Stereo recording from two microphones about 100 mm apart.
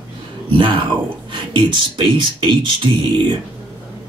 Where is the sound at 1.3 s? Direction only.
55° right (ahead or behind).